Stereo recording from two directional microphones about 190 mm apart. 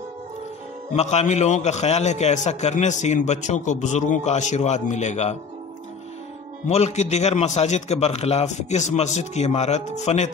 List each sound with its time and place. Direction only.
0.9 s a man's voice: 35° left (ahead or behind)
6.7 s a man's voice: 35° left (ahead or behind)